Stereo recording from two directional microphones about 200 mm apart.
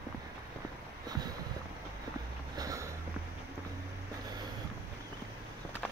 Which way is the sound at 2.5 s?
15° right (ahead or behind).